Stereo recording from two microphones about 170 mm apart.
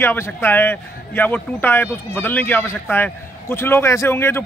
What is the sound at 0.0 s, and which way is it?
A man's voice, 10° left (ahead or behind).